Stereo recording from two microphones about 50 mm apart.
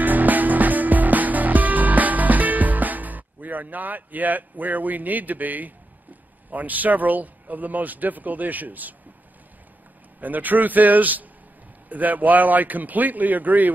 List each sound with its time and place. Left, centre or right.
0.0 s music: right
6.5 s speech: right
10.2 s speech: right